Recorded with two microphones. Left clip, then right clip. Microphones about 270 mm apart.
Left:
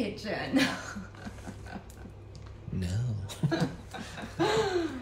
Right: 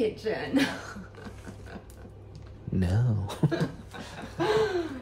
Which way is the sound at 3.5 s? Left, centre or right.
Centre.